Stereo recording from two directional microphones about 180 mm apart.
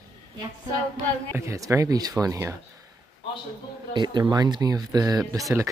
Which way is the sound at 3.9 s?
25° right (ahead or behind).